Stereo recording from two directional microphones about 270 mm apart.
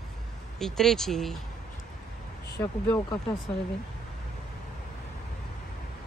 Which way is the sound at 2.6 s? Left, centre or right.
Centre.